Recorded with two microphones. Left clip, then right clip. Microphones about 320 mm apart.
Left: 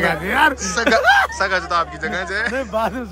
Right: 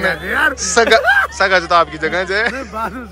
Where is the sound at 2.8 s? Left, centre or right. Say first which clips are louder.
Left 2 dB; left.